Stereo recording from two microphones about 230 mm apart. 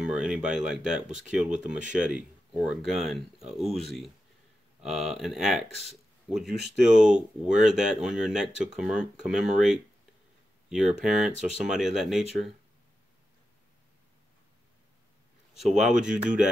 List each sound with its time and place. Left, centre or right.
0.0 s speech: centre
15.5 s speech: centre